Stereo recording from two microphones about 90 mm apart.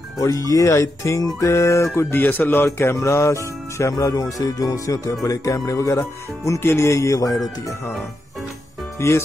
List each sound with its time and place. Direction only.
0.2 s speech: 40° left (ahead or behind)
9.0 s speech: 30° left (ahead or behind)